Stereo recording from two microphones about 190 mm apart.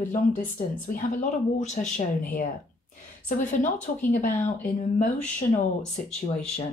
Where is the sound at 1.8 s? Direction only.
40° left (ahead or behind).